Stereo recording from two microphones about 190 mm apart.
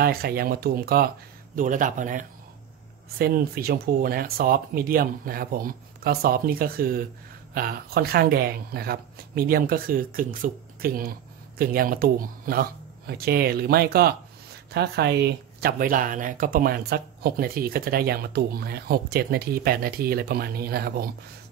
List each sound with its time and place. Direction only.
0.0 s speech: 55° right (ahead or behind)